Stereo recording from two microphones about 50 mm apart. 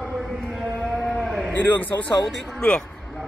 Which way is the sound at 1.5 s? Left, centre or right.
Left.